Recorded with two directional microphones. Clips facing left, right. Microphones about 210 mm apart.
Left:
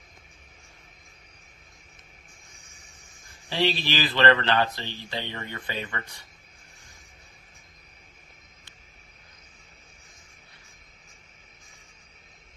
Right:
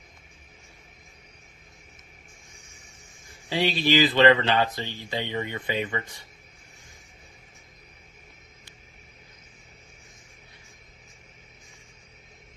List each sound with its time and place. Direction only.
3.4 s speech: 15° right (ahead or behind)